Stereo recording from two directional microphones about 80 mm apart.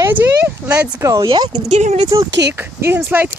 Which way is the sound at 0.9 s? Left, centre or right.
Right.